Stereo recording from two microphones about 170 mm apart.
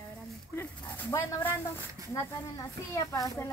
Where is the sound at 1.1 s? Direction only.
10° left (ahead or behind).